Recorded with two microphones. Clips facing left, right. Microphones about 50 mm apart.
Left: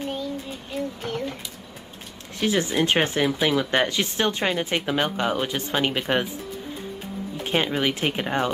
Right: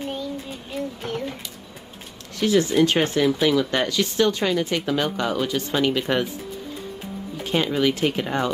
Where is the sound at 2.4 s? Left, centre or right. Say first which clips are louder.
Right 4 dB; left.